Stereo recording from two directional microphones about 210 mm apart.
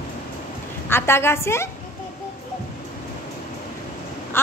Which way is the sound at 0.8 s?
10° left (ahead or behind).